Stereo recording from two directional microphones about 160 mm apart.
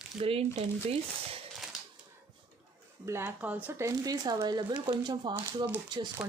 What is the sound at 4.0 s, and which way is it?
Speech, 25° right (ahead or behind).